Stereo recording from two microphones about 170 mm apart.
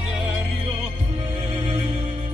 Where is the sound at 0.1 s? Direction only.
5° right (ahead or behind).